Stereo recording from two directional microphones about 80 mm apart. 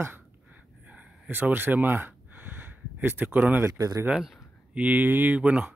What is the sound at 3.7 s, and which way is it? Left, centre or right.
Speech, right.